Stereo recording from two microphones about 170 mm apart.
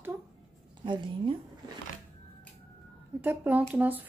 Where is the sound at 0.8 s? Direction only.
30° right (ahead or behind).